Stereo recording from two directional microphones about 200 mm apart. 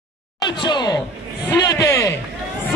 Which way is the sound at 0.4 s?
20° left (ahead or behind).